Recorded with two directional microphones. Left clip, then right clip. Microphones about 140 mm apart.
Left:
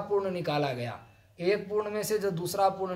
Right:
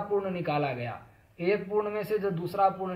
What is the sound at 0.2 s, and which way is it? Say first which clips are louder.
A man's voice: even; 30° left (ahead or behind).